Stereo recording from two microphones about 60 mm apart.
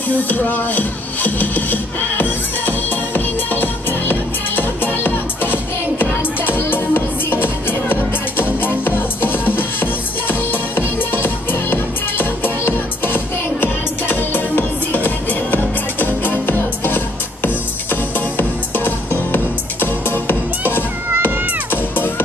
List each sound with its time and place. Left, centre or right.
0.1 s speech: left
3.5 s music: left
18.9 s music: left